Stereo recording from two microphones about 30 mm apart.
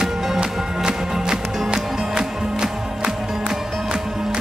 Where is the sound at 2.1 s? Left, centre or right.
Right.